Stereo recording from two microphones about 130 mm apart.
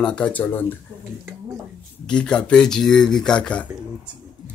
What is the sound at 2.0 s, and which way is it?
Speech, 5° left (ahead or behind).